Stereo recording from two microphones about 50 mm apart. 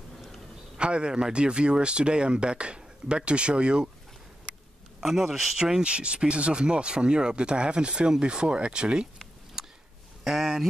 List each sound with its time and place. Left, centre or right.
0.7 s speech: centre
5.0 s a man's voice: centre
5.6 s speech: centre
9.6 s a sound: centre
10.2 s a man's voice: centre